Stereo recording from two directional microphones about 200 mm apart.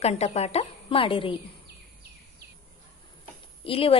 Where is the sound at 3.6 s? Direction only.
30° left (ahead or behind).